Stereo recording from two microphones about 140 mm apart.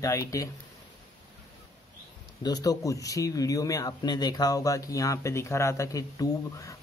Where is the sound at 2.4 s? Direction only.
25° left (ahead or behind).